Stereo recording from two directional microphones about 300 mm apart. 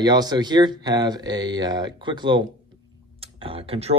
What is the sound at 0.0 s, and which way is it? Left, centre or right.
Speech, centre.